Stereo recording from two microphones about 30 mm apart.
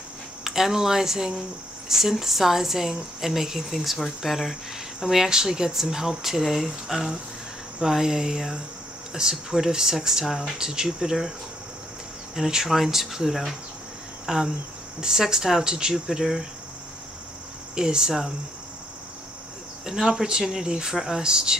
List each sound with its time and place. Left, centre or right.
0.4 s speech: centre
5.1 s speech: centre
12.4 s speech: centre
12.6 s speech: centre; by 16.0 s right
16.1 s speech: centre
17.7 s speech: right
19.8 s speech: centre
20.9 s speech: centre
21.2 s speech: right